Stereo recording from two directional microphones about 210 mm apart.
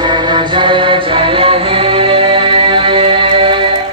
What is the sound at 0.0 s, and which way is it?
Music, 20° right (ahead or behind).